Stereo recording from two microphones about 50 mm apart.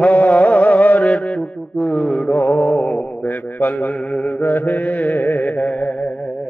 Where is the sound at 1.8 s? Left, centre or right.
Left.